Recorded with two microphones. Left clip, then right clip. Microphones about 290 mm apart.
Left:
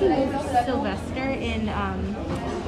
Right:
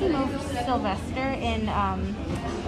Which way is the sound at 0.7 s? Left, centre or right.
Centre.